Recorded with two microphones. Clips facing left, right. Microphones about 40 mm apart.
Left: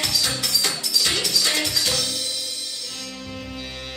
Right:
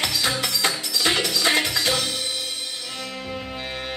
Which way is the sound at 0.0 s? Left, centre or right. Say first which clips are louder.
Right 2 dB; right.